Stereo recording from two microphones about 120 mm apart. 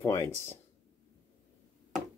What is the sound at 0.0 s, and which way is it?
Speech, 20° left (ahead or behind).